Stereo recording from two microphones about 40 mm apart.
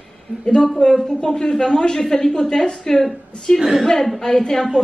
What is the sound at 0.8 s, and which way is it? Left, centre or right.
A woman's voice, left.